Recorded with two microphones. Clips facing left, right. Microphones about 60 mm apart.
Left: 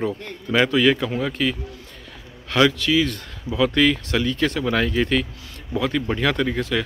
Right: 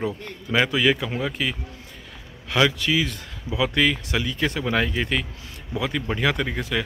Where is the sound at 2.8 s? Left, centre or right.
Centre.